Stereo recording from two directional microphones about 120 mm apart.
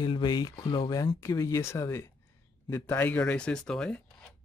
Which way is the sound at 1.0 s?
30° left (ahead or behind).